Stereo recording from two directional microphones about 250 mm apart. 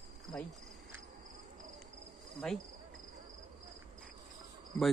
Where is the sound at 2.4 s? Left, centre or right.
Centre.